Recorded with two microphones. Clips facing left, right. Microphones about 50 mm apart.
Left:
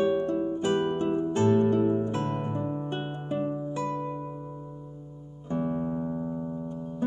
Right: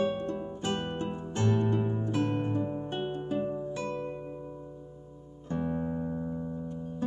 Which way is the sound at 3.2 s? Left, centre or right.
Left.